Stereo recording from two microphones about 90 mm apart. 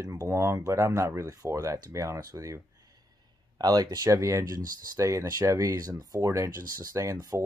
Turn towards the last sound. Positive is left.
turn(degrees=-40)  # may be behind; listen again after turning